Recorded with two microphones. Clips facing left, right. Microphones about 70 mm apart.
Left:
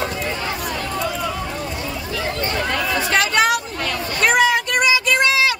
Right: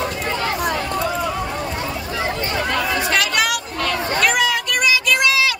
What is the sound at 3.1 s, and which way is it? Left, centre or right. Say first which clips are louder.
Chatter: left 6 dB; left.